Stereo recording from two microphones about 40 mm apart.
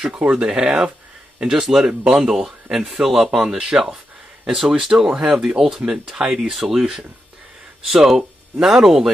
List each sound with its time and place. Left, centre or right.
0.3 s speech: right; by 6.8 s centre
7.9 s speech: centre